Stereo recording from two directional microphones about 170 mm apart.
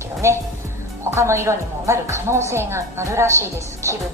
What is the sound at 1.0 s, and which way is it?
A woman's voice, 15° right (ahead or behind).